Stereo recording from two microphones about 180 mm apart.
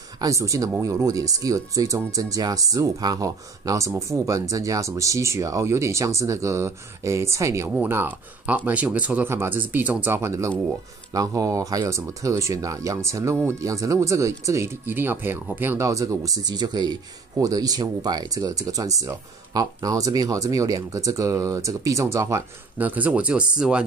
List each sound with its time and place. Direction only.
0.2 s speech: 20° right (ahead or behind)